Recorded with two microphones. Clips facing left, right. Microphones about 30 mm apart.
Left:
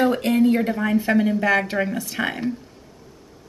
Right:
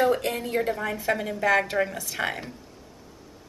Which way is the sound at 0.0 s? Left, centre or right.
Left.